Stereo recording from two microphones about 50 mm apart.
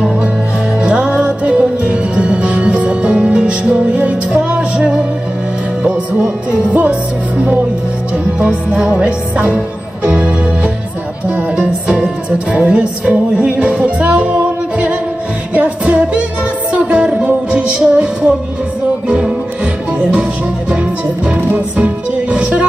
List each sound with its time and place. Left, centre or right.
0.7 s music: right
4.5 s music: centre
6.7 s music: right
8.4 s music: right
21.5 s music: right